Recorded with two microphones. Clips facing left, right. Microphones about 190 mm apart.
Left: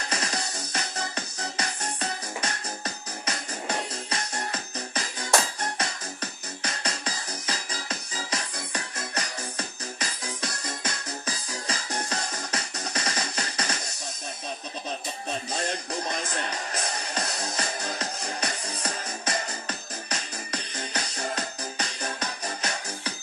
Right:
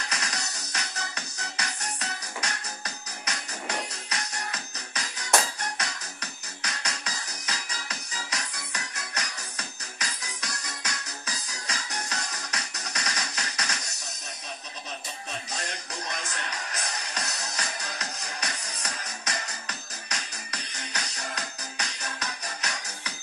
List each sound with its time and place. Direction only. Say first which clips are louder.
0.1 s music: left 8 dB; 30° left (ahead or behind)
15.5 s music: left 7 dB; 30° left (ahead or behind)